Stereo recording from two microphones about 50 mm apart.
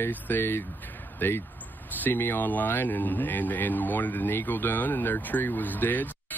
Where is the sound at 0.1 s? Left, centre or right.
Left.